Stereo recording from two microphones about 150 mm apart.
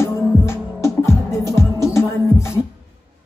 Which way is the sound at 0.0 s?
20° left (ahead or behind).